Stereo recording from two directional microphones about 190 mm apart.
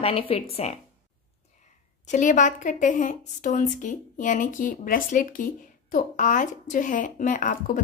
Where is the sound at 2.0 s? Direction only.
40° left (ahead or behind).